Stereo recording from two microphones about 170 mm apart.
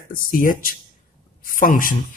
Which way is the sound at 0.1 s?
55° left (ahead or behind).